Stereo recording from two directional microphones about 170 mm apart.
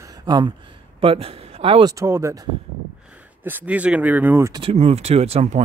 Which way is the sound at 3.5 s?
10° right (ahead or behind).